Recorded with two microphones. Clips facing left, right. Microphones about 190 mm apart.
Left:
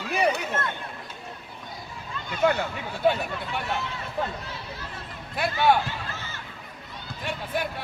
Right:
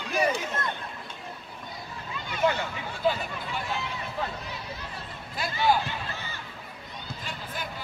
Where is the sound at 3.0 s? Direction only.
65° left (ahead or behind).